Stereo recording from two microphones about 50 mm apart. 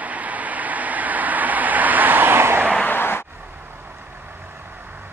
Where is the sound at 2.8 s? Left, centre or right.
Left.